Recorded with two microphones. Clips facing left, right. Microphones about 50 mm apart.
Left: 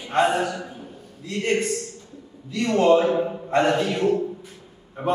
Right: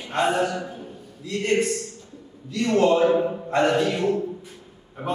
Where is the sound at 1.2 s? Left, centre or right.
Centre.